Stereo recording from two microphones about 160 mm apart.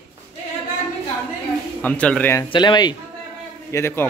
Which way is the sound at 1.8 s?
10° left (ahead or behind).